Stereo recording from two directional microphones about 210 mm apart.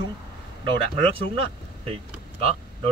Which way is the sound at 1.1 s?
25° right (ahead or behind).